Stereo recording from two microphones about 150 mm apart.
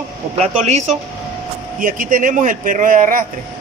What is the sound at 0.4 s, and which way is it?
Speech, 45° right (ahead or behind).